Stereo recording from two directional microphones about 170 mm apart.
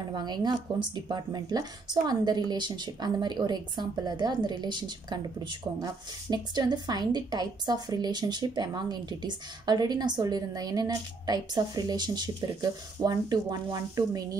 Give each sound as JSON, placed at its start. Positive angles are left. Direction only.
{"t": 0.1, "sound": "a woman's voice", "side_deg": -25}
{"t": 6.3, "sound": "a woman's voice", "side_deg": -25}